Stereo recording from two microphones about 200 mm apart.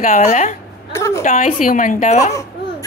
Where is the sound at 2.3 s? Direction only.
15° left (ahead or behind).